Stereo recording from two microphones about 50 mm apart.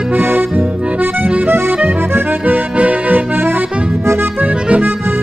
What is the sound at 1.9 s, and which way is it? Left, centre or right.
Accordion, right.